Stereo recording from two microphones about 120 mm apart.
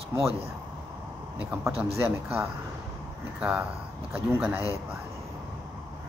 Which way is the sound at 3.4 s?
10° right (ahead or behind).